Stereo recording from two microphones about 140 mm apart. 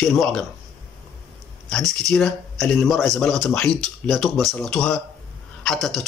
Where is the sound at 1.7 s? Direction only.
Centre (ahead or behind).